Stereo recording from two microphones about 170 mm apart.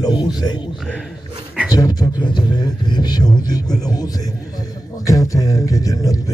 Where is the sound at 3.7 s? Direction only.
20° left (ahead or behind).